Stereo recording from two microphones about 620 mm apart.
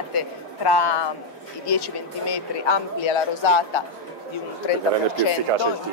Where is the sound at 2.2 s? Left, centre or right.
Left.